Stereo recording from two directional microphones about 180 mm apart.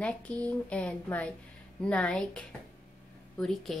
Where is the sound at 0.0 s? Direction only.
5° left (ahead or behind).